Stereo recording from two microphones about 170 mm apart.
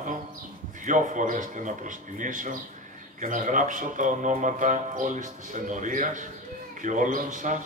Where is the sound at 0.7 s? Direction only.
50° right (ahead or behind).